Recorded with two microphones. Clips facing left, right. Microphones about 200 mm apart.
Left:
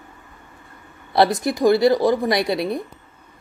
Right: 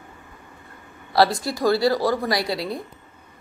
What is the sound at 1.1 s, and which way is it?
A woman's voice, 20° left (ahead or behind).